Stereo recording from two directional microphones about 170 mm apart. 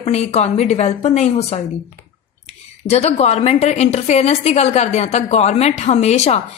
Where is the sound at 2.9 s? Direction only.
40° left (ahead or behind).